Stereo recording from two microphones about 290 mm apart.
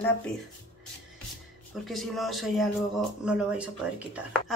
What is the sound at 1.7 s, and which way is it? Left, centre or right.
Speech, centre.